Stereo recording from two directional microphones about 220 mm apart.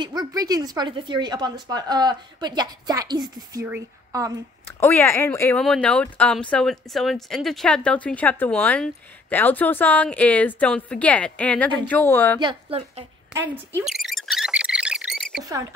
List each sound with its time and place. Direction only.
0.0 s speech: 20° right (ahead or behind)
4.6 s speech: 10° left (ahead or behind)
12.4 s speech: 25° right (ahead or behind)
13.3 s a sound: 10° right (ahead or behind)